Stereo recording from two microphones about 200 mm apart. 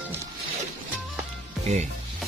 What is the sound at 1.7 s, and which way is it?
Music, 35° right (ahead or behind).